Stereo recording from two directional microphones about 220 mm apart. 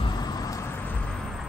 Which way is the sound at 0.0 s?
20° left (ahead or behind).